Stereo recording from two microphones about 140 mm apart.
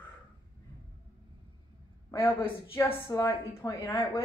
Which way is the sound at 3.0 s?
25° left (ahead or behind).